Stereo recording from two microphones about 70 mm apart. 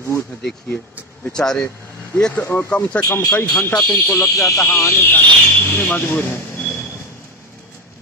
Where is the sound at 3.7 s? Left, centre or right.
Left.